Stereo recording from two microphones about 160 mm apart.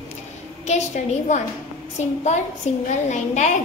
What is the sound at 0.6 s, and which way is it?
A woman's voice, 45° left (ahead or behind).